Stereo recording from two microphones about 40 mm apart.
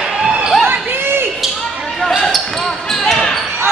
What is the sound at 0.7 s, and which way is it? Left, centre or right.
Basketball bounce, right.